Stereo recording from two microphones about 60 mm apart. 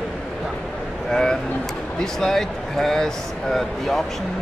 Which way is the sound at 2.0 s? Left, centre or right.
Centre.